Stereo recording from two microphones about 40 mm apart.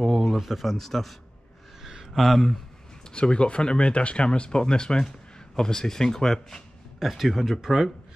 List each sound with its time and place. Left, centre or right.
0.0 s speech: centre
1.8 s a sound: centre
3.1 s speech: left
7.0 s speech: centre